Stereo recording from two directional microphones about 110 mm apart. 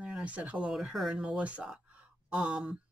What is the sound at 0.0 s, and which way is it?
Speech, 10° right (ahead or behind).